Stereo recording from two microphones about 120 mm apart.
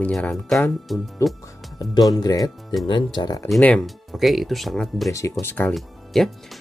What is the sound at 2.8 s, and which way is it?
Speech, 40° left (ahead or behind).